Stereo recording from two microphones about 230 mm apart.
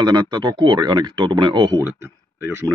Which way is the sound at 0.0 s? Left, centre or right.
Centre.